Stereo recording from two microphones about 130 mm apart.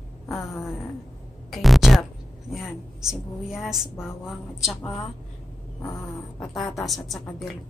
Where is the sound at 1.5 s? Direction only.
Centre (ahead or behind).